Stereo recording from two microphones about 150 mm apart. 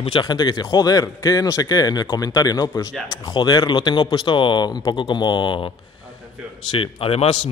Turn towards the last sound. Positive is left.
turn(degrees=40)  # may be behind; listen again after turning